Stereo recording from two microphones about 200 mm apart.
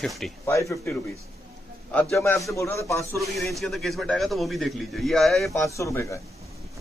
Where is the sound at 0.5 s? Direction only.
15° left (ahead or behind).